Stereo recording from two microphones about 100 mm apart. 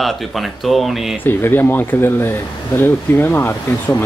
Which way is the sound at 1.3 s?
20° left (ahead or behind).